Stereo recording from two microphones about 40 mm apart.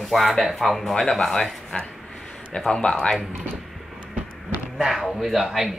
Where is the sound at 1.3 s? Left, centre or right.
Left.